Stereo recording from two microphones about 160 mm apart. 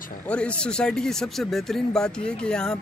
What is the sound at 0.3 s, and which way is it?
Speech, 5° left (ahead or behind).